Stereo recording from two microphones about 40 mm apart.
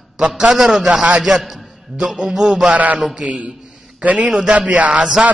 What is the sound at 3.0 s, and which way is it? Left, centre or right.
Speech, centre.